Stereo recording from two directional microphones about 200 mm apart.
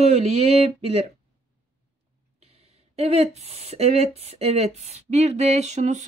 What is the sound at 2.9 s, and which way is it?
Speech, 30° right (ahead or behind).